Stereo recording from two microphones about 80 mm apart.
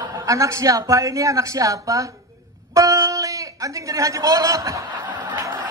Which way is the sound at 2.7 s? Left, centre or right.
Right.